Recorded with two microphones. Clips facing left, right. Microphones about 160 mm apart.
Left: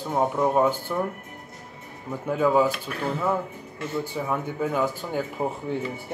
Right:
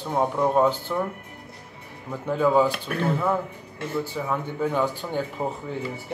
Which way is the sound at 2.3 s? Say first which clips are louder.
Right 1 dB; 10° left (ahead or behind).